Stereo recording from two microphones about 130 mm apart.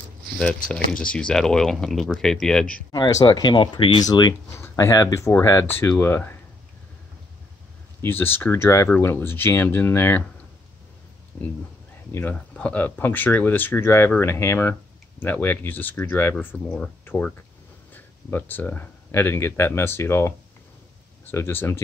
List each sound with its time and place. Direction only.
0.4 s speech: 10° left (ahead or behind)
2.9 s speech: 30° left (ahead or behind)
8.0 s speech: 15° left (ahead or behind)
11.3 s speech: 20° left (ahead or behind)